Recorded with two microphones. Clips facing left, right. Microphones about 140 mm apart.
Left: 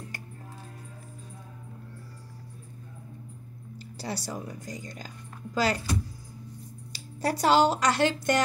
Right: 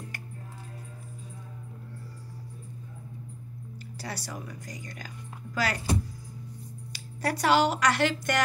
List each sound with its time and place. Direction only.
4.0 s speech: 25° left (ahead or behind)
6.9 s speech: 30° left (ahead or behind)